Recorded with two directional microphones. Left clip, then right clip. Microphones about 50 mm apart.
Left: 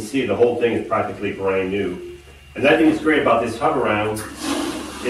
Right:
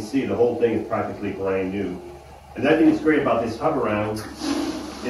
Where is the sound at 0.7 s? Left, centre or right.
Left.